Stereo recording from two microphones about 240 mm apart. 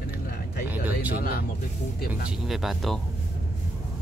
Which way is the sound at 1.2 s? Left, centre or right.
Left.